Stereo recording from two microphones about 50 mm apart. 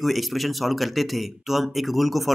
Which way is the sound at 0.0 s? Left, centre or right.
Centre.